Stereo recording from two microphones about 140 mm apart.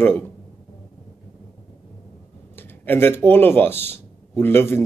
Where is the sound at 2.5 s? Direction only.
15° left (ahead or behind).